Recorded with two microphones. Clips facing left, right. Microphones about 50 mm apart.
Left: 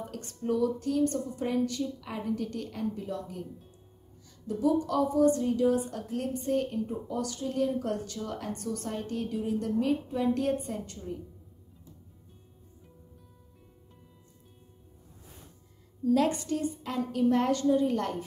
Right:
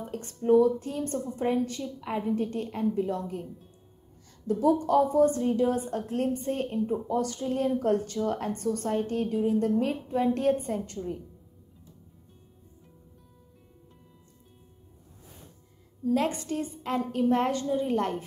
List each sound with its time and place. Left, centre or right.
0.1 s a woman's voice: right
4.5 s a woman's voice: right
16.1 s a woman's voice: right